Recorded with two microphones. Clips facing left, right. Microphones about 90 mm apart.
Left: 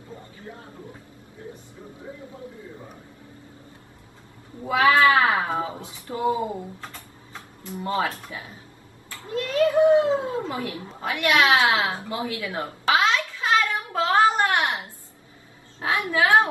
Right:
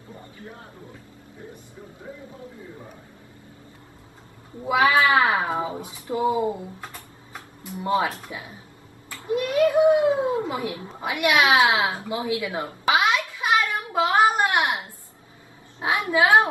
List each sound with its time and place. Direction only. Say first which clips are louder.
4.6 s speech: left 1 dB; 20° right (ahead or behind)
13.3 s a sound: even; 15° right (ahead or behind)
15.8 s a woman's voice: right 2 dB; 20° right (ahead or behind)